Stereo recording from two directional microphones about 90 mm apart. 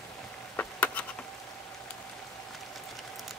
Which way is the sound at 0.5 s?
15° left (ahead or behind).